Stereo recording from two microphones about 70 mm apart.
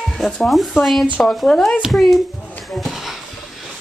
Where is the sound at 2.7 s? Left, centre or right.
Centre.